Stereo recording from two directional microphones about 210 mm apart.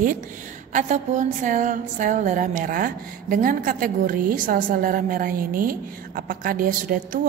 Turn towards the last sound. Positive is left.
turn(degrees=-40)  # may be behind; listen again after turning